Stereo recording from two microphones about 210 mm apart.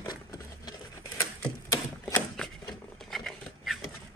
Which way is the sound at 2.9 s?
Centre (ahead or behind).